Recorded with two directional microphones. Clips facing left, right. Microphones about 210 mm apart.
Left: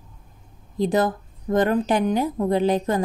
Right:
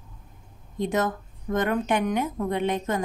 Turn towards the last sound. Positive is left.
turn(degrees=35)  # may be behind; listen again after turning